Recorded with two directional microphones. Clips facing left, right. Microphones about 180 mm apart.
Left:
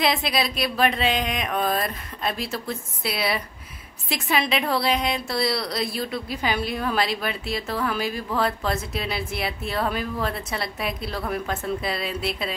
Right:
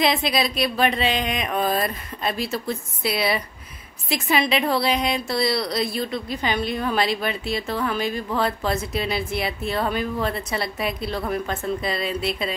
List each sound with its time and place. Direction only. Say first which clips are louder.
0.0 s a woman's voice: right 2 dB; centre (ahead or behind)